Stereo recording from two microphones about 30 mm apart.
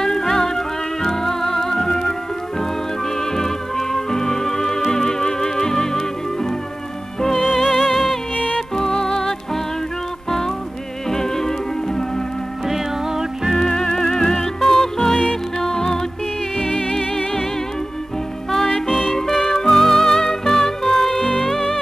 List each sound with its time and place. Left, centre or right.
0.0 s music: centre
3.2 s music: centre
11.1 s music: centre
12.6 s music: centre
13.6 s music: centre
17.1 s music: centre
18.7 s music: left